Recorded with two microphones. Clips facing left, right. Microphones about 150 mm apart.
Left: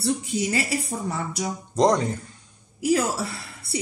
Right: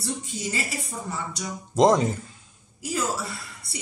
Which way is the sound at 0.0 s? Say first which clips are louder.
Left 7 dB; 70° left (ahead or behind).